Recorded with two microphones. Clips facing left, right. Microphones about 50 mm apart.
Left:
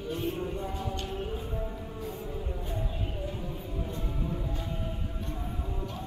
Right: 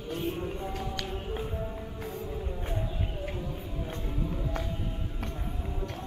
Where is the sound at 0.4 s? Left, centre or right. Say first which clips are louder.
Even; centre.